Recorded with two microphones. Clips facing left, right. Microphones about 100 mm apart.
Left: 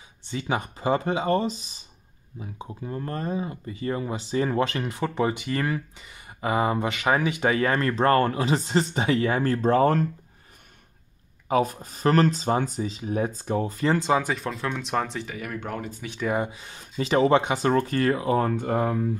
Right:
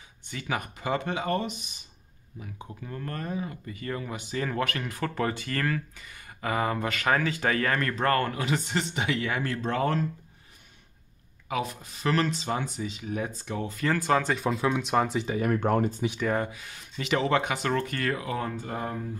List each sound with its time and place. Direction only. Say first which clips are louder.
0.2 s speech: left 4 dB; 25° left (ahead or behind)
11.4 s speech: left 8 dB; 40° left (ahead or behind); by 14.1 s 25° left (ahead or behind)
14.1 s speech: left 1 dB; 5° left (ahead or behind)
14.4 s speech: right 3 dB; 5° right (ahead or behind)
15.2 s speech: right 7 dB; 35° right (ahead or behind)
16.2 s speech: left 3 dB; 10° left (ahead or behind)
16.4 s speech: left 2 dB; 30° left (ahead or behind)
18.5 s speech: left 8 dB; 60° left (ahead or behind)